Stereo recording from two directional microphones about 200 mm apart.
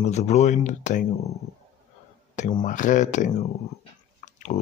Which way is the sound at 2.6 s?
40° left (ahead or behind).